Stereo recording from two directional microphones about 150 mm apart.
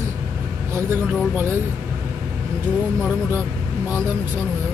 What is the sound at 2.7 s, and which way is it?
Speech, 10° right (ahead or behind).